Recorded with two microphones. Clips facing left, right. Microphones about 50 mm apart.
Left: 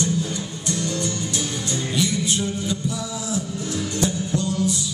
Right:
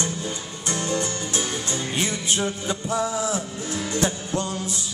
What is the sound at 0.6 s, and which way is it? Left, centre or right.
Music, right.